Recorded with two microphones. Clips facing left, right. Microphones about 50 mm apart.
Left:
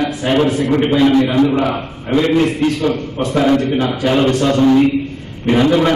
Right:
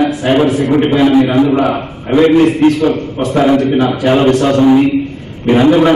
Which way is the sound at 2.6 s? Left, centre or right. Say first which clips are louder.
Right 7 dB; right.